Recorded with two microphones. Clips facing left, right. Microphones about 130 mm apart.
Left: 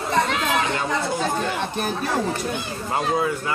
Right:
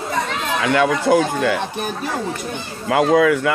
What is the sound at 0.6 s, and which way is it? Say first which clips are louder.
Speech: right 6 dB; 85° right.